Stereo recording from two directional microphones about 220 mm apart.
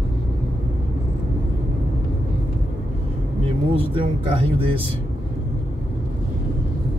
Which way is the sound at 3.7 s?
25° right (ahead or behind).